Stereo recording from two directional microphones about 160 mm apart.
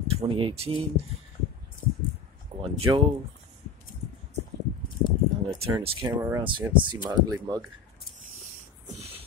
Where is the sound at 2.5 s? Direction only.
40° right (ahead or behind).